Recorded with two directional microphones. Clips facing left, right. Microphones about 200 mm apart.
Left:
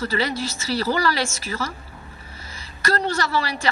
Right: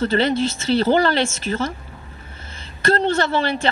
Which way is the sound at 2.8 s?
25° right (ahead or behind).